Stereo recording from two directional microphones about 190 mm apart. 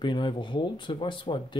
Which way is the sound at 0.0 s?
25° left (ahead or behind).